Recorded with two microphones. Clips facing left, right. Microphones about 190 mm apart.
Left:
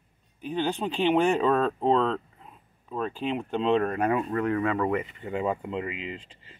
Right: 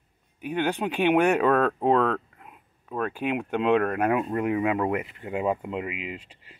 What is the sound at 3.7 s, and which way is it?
Speech, 60° right (ahead or behind).